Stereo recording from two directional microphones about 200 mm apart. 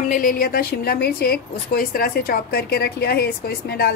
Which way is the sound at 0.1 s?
45° left (ahead or behind).